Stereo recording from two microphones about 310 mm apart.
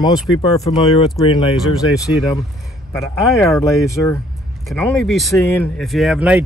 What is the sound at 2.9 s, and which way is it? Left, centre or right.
Speech, centre.